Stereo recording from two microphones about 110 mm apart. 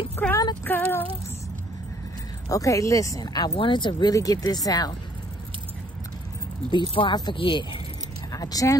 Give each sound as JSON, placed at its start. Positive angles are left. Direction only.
{"t": 0.2, "sound": "child singing", "side_deg": 20}
{"t": 0.7, "sound": "a sound", "side_deg": 15}
{"t": 2.5, "sound": "speech", "side_deg": 30}
{"t": 3.5, "sound": "speech", "side_deg": 45}
{"t": 4.1, "sound": "speech", "side_deg": 35}
{"t": 6.7, "sound": "speech", "side_deg": 50}
{"t": 8.3, "sound": "a sound", "side_deg": 35}